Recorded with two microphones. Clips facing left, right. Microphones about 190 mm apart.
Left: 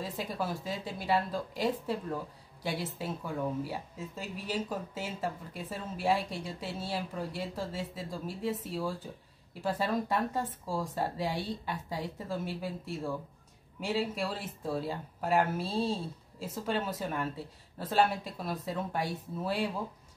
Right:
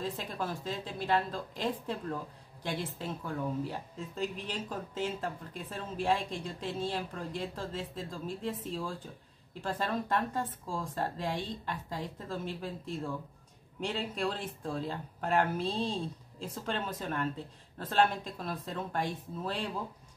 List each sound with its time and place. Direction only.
0.0 s speech: 10° left (ahead or behind)